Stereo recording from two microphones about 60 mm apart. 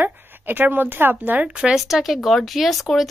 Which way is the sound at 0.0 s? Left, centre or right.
Right.